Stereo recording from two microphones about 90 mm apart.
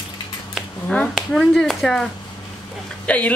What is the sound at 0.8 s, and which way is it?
Speech, 15° left (ahead or behind).